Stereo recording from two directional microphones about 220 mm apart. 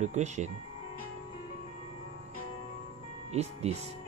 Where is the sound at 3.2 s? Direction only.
30° right (ahead or behind).